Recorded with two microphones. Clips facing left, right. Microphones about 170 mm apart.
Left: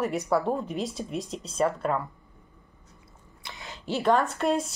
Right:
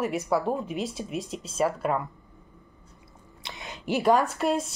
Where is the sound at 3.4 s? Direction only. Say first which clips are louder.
Right 2 dB; 20° right (ahead or behind).